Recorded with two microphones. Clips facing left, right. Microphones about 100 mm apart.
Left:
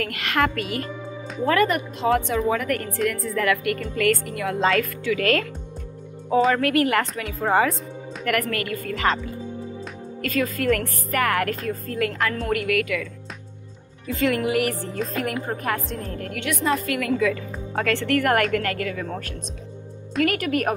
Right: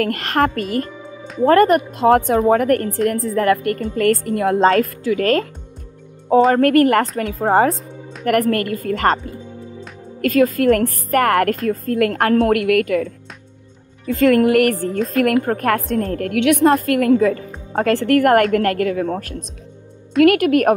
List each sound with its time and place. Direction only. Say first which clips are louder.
0.0 s a woman's voice: right 6 dB; 40° right (ahead or behind)
6.5 s a woman's voice: right 7 dB; 50° right (ahead or behind)
14.1 s a woman's voice: right 9 dB; 50° right (ahead or behind)
15.1 s a woman's voice: right 13 dB; 60° right (ahead or behind)
20.2 s a woman's voice: right 11 dB; 55° right (ahead or behind)